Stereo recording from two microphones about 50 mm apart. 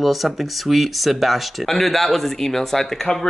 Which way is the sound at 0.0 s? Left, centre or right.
Centre.